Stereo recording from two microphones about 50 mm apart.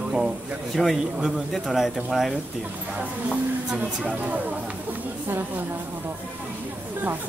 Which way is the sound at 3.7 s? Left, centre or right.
Right.